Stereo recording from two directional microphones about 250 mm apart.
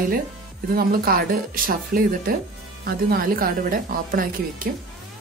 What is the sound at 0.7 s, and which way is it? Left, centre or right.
Speech, right.